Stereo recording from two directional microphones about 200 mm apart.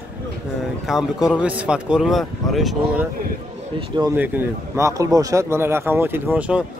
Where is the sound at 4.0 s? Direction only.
10° right (ahead or behind).